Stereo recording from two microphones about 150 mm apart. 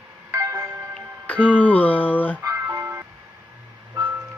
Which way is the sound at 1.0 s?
10° left (ahead or behind).